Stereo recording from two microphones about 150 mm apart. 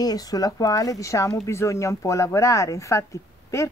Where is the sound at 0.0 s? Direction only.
25° left (ahead or behind).